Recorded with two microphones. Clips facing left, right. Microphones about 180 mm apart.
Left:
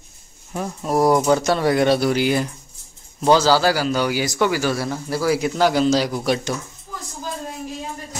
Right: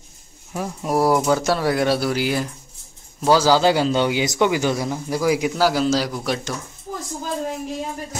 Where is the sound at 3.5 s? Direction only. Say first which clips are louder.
Right 1 dB; 20° right (ahead or behind); by 6.2 s centre (ahead or behind).